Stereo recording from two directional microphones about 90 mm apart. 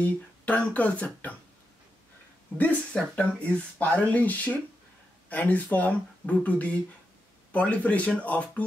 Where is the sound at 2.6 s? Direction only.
10° left (ahead or behind).